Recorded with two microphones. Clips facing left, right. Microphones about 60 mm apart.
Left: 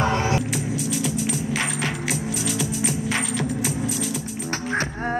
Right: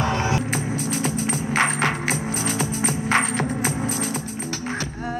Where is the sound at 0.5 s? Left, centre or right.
Right.